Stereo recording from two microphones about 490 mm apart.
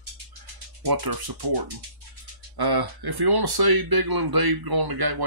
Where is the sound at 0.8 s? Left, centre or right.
Right.